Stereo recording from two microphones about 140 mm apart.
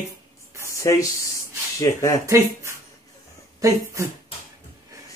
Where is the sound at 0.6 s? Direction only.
20° left (ahead or behind).